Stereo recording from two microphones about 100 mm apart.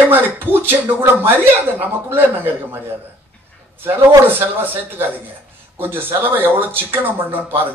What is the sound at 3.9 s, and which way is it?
A man's voice, 20° right (ahead or behind).